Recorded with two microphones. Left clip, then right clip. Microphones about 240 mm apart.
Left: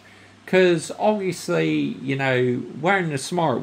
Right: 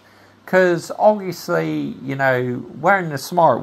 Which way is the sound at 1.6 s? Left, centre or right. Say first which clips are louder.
Left 1 dB; right.